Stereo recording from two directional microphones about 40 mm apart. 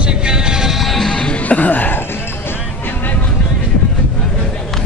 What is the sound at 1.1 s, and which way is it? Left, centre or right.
Music, left.